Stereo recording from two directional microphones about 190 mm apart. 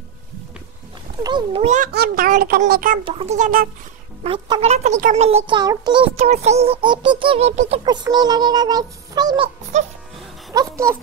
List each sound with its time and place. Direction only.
1.2 s a child's voice: 25° right (ahead or behind)
1.9 s speech: 55° right (ahead or behind)
3.1 s speech: 30° right (ahead or behind)
4.2 s speech: 30° right (ahead or behind)
5.6 s a child's voice: 20° right (ahead or behind)
6.1 s speech: 35° right (ahead or behind)
7.7 s a child's voice: 20° right (ahead or behind)
9.7 s speech: 35° right (ahead or behind)
10.5 s a child's voice: 15° right (ahead or behind)